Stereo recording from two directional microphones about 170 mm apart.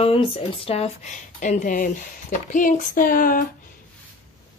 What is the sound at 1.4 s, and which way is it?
Speech, 50° left (ahead or behind).